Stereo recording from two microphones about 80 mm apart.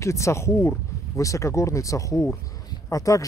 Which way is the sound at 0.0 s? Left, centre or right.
Left.